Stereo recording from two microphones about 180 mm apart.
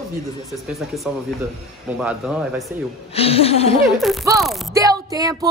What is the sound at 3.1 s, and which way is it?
Speech, 35° left (ahead or behind).